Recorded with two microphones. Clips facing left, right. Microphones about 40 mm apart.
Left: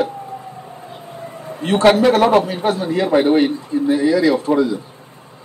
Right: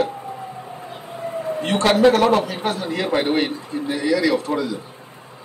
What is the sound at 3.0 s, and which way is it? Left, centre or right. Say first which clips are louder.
Speech: left 6 dB; right.